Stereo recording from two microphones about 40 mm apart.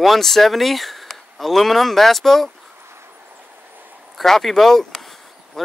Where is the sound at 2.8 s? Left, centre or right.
Right.